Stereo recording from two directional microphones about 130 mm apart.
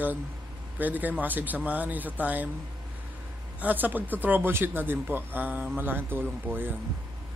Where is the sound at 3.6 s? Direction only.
15° right (ahead or behind).